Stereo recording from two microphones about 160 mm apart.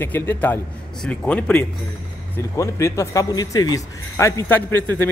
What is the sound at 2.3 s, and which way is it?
A man's voice, 20° left (ahead or behind).